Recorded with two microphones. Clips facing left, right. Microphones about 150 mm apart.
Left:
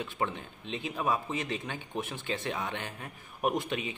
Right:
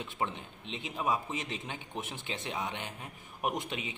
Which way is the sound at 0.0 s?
20° right (ahead or behind).